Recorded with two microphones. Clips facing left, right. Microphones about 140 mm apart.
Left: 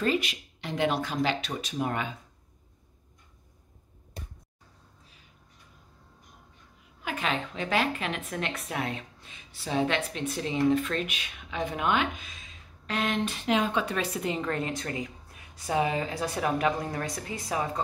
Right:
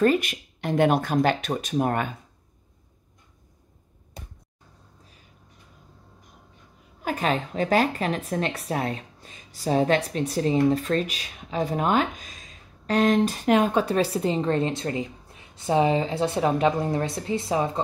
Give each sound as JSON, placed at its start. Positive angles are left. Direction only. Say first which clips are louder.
{"t": 0.0, "sound": "speech", "louder": "right 7 dB", "side_deg": -50}
{"t": 7.0, "sound": "a woman's voice", "louder": "right 6 dB", "side_deg": -40}